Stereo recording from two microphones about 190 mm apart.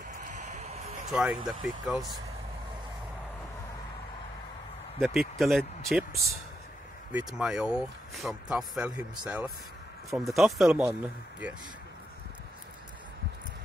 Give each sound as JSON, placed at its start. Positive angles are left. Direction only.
{"t": 0.2, "sound": "a sound", "side_deg": -40}
{"t": 1.0, "sound": "speech", "side_deg": 0}
{"t": 5.0, "sound": "speech", "side_deg": 0}
{"t": 7.1, "sound": "speech", "side_deg": -5}